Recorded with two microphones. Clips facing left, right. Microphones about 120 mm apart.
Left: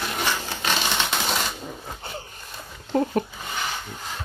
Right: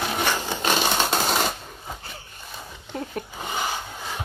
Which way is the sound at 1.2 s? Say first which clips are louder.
Right 3 dB; centre (ahead or behind).